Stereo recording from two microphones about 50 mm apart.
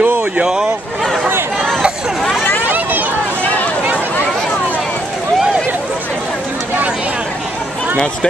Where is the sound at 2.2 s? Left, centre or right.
Centre.